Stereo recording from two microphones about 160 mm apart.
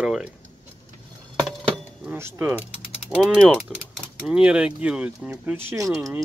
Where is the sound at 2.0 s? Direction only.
15° right (ahead or behind).